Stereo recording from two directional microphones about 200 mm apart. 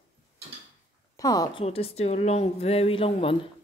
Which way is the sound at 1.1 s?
15° left (ahead or behind).